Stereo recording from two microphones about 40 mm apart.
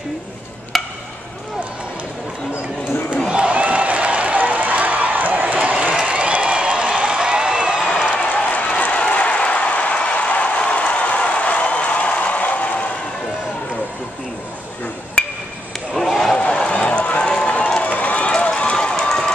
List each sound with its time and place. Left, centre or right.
0.7 s chop: centre
3.3 s a sound: right
8.1 s applause: left
15.9 s a sound: centre
16.3 s run: left
18.9 s run: centre